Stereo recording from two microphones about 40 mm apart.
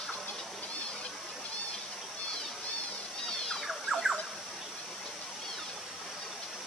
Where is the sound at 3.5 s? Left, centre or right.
Centre.